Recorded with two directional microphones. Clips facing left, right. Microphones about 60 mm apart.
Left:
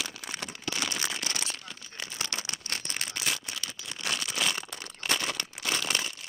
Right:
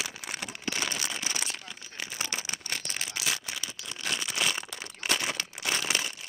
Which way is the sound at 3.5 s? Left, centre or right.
Right.